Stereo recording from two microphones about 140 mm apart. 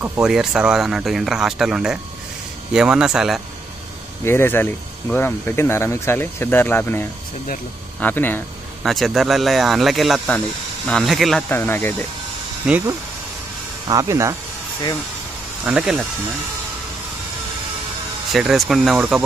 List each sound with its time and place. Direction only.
0.0 s speech: 15° right (ahead or behind)
4.2 s speech: 15° left (ahead or behind)
8.8 s speech: centre (ahead or behind)
11.4 s speech: 15° left (ahead or behind)
12.7 s speech: 5° right (ahead or behind)
13.8 s speech: 25° right (ahead or behind)
15.6 s speech: 5° right (ahead or behind)
18.3 s speech: 5° right (ahead or behind)